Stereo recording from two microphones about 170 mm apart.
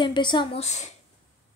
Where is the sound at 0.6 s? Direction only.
40° left (ahead or behind).